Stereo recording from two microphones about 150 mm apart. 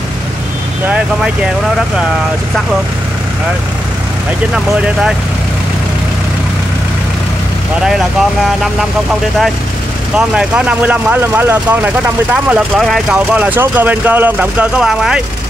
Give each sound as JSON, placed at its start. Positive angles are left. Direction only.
{"t": 0.8, "sound": "speech", "side_deg": -5}
{"t": 7.8, "sound": "speech", "side_deg": 0}
{"t": 10.1, "sound": "speech", "side_deg": -5}